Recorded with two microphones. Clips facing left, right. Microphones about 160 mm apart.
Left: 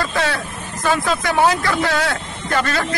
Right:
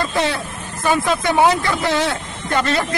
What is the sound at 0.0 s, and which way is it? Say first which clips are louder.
Vehicle: right 1 dB; 20° right (ahead or behind).